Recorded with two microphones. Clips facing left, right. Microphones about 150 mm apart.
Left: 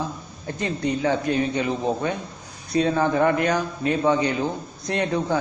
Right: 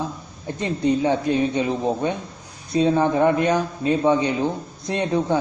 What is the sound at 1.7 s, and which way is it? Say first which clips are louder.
Speech: right 1 dB; 10° right (ahead or behind).